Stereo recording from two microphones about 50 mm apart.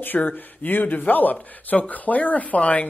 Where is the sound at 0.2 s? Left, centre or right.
Left.